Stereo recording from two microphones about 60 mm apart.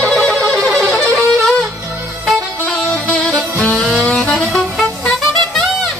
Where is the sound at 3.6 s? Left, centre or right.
Left.